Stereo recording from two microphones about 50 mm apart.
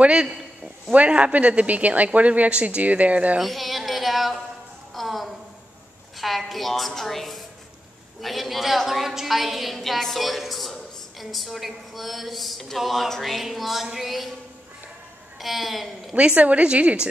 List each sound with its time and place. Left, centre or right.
0.0 s speech: centre
3.3 s a woman's voice: centre
4.9 s a sound: centre
6.1 s a woman's voice: centre
15.3 s a woman's voice: centre
16.2 s speech: right